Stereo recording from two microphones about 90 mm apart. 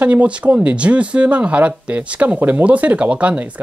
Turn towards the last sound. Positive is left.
turn(degrees=-15)  # may be behind; listen again after turning